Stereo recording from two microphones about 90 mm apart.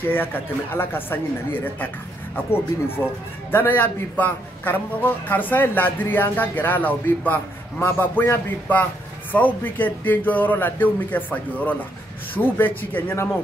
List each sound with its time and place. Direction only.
0.1 s a man's voice: 20° left (ahead or behind)
3.0 s a man's voice: 30° left (ahead or behind)